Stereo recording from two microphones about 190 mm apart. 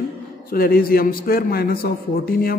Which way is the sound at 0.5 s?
50° left (ahead or behind).